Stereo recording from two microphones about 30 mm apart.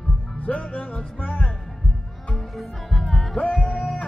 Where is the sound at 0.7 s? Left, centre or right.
Left.